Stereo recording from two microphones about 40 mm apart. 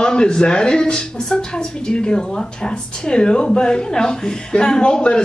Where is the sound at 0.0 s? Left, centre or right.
Left.